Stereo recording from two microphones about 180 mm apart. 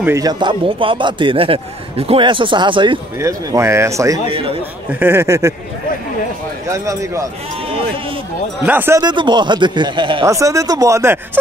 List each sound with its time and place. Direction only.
0.0 s a man's voice: 15° right (ahead or behind)
3.2 s speech: 15° right (ahead or behind)
4.3 s a man's voice: 30° right (ahead or behind)
4.9 s speech: 10° right (ahead or behind)
6.7 s speech: 15° right (ahead or behind)
8.6 s speech: 10° right (ahead or behind)
9.0 s a man's voice: 25° right (ahead or behind)